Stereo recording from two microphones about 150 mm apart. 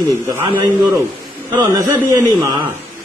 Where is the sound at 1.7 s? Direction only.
20° right (ahead or behind).